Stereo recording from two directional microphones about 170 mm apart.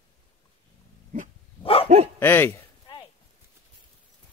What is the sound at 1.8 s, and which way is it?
Dog, 40° right (ahead or behind).